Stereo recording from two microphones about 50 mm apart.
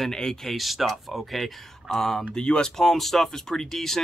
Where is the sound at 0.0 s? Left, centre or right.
Centre.